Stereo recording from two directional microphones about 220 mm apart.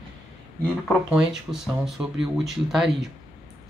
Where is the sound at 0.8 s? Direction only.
5° right (ahead or behind).